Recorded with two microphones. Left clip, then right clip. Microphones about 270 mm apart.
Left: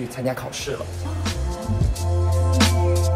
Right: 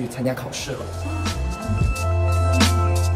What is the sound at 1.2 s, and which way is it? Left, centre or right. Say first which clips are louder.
Music: left 1 dB; centre.